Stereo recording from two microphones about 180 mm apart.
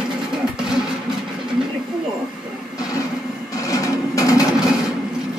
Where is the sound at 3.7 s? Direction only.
20° left (ahead or behind).